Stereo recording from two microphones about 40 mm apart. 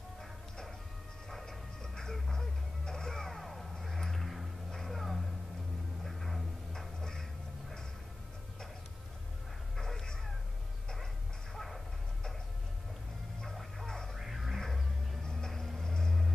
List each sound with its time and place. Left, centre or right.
0.2 s music: centre
3.3 s a sound: centre
6.7 s music: centre
9.8 s dog: centre
11.5 s a sound: centre
13.8 s music: centre
14.1 s music: centre
15.2 s vehicle: centre